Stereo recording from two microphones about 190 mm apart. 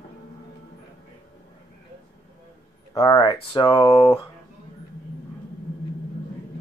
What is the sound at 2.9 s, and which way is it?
Speech, 20° left (ahead or behind).